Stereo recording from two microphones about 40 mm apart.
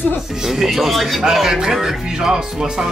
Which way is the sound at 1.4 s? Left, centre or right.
Centre.